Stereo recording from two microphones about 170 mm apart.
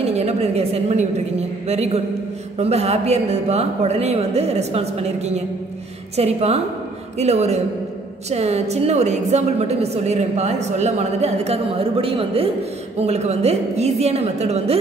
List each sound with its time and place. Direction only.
0.2 s a woman's voice: 40° right (ahead or behind)